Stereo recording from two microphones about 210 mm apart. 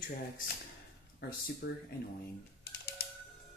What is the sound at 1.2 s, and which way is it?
Speech, 50° left (ahead or behind).